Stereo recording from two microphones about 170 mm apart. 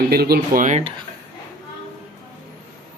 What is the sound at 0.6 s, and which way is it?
Speech, 40° right (ahead or behind).